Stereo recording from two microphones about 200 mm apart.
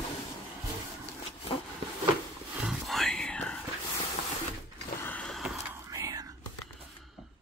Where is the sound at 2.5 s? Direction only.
Centre (ahead or behind).